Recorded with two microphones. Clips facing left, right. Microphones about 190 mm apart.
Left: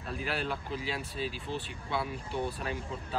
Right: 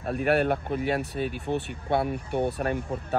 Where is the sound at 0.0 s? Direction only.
60° right (ahead or behind).